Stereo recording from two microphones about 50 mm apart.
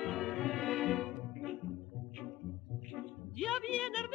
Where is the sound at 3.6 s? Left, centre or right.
Centre.